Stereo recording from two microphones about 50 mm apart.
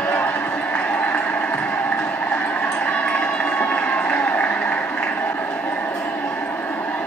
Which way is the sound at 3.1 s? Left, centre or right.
Left.